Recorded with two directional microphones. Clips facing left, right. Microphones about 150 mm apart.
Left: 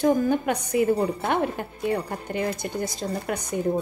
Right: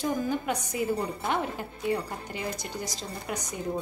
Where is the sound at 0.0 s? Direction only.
60° left (ahead or behind).